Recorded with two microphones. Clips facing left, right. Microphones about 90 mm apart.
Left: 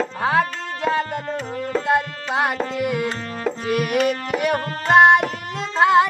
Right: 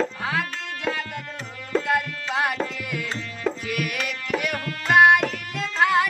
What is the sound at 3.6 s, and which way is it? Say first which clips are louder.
Carnatic music: left 9 dB; 30° left (ahead or behind).